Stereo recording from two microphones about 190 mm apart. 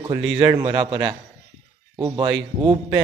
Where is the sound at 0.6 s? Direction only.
25° right (ahead or behind).